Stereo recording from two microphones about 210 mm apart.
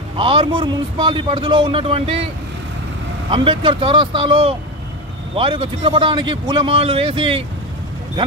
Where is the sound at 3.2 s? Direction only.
25° right (ahead or behind).